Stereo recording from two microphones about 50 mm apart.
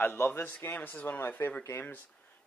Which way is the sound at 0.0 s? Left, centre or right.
Left.